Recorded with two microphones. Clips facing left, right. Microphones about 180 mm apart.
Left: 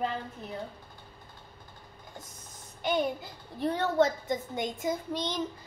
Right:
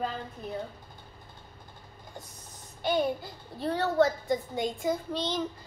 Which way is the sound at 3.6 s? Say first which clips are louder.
Right 1 dB; 20° left (ahead or behind).